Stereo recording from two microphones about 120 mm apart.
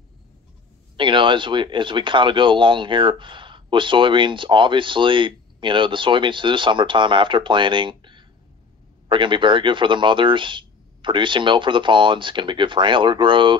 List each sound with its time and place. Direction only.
0.9 s speech: 40° right (ahead or behind)